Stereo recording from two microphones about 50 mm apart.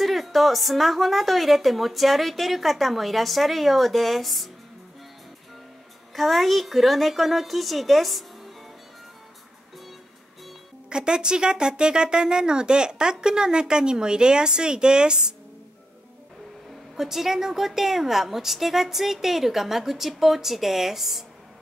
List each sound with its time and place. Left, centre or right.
0.0 s speech: centre
6.1 s speech: centre
10.9 s speech: centre
16.9 s speech: centre